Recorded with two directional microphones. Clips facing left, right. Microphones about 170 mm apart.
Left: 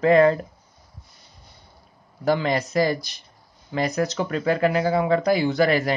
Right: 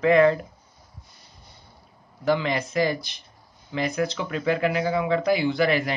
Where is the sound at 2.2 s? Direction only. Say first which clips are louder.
Left 2 dB; 40° left (ahead or behind).